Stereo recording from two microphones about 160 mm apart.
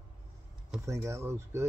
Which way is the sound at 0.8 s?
20° right (ahead or behind).